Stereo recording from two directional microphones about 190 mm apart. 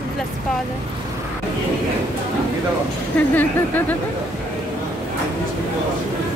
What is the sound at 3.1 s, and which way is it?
Speech, 10° left (ahead or behind).